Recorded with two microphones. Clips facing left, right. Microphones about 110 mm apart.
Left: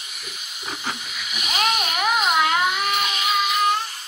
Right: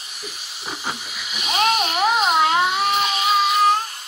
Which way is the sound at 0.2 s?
30° right (ahead or behind).